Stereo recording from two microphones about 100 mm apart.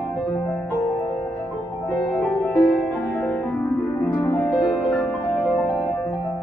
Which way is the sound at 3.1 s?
15° left (ahead or behind).